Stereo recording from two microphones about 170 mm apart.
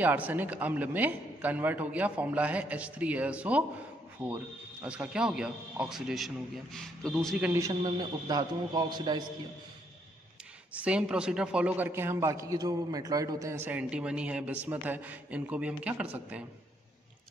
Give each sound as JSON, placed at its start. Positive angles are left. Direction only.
{"t": 0.0, "sound": "a man's voice", "side_deg": -10}
{"t": 4.8, "sound": "a man's voice", "side_deg": -5}
{"t": 7.5, "sound": "a man's voice", "side_deg": -20}
{"t": 10.7, "sound": "a man's voice", "side_deg": -5}